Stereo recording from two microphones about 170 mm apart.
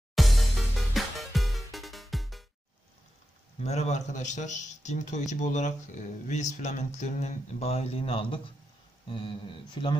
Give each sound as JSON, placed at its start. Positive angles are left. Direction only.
{"t": 0.1, "sound": "music", "side_deg": 0}
{"t": 3.6, "sound": "speech", "side_deg": 40}